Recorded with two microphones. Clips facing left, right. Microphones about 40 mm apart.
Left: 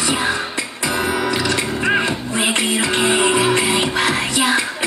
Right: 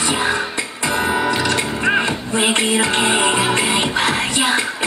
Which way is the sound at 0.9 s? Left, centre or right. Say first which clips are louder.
Right 2 dB; centre.